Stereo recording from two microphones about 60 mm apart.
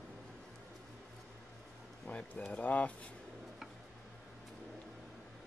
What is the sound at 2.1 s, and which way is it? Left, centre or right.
Speech, left.